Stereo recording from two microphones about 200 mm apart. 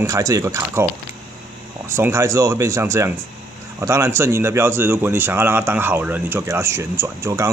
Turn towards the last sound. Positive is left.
turn(degrees=-15)  # may be behind; listen again after turning